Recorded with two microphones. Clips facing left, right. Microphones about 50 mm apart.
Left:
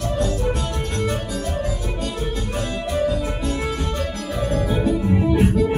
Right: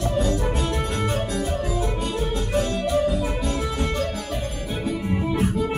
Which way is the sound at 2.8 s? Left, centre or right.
Centre.